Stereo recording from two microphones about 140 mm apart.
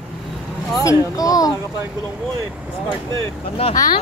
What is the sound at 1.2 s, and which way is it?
Speech, 25° left (ahead or behind).